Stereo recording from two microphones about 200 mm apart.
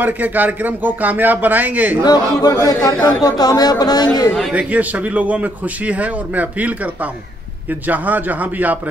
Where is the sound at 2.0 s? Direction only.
20° left (ahead or behind).